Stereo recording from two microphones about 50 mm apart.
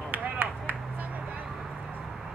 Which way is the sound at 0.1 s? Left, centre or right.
Right.